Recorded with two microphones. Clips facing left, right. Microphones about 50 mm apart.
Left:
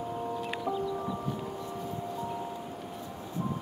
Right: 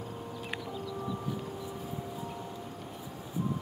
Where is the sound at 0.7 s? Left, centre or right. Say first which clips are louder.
Left 8 dB; left.